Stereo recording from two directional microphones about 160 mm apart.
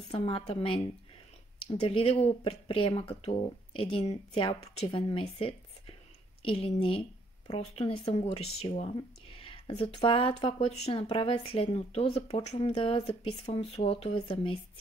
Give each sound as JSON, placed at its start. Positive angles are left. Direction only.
{"t": 0.1, "sound": "speech", "side_deg": 35}